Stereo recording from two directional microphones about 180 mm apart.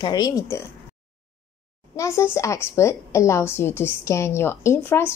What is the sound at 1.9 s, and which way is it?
A woman's voice, 15° left (ahead or behind).